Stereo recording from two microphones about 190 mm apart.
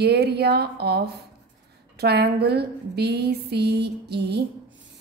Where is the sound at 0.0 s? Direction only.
60° right (ahead or behind).